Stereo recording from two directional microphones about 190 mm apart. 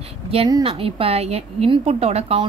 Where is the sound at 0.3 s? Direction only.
25° right (ahead or behind).